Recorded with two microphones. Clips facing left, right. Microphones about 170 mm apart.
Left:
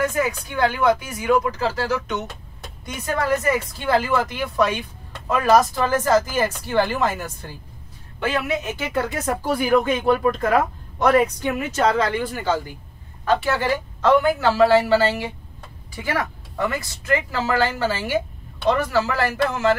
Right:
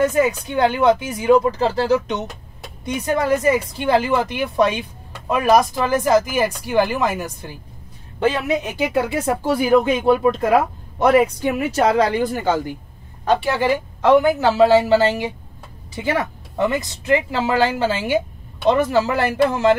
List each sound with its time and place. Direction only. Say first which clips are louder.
0.0 s speech: right 5 dB; 20° right (ahead or behind)
10.0 s speech: right 3 dB; 20° right (ahead or behind)
10.5 s speech: right 3 dB; 10° right (ahead or behind)
12.1 s speech: right 4 dB; 40° right (ahead or behind)
13.2 s speech: right 2 dB; 15° right (ahead or behind)